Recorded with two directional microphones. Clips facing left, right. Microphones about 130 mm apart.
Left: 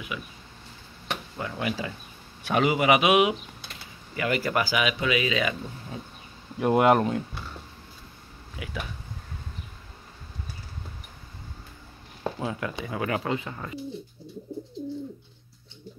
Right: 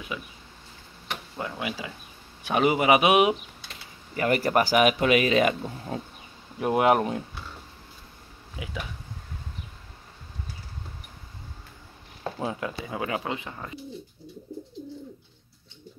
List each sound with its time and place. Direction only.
0.1 s speech: 30° right (ahead or behind)
1.4 s a man's voice: 20° right (ahead or behind); by 5.9 s 45° right (ahead or behind)
6.6 s speech: 5° right (ahead or behind)
8.6 s a man's voice: 20° right (ahead or behind)
12.4 s a man's voice: 25° right (ahead or behind)